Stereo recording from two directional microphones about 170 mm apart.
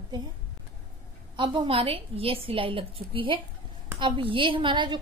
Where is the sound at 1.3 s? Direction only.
30° right (ahead or behind).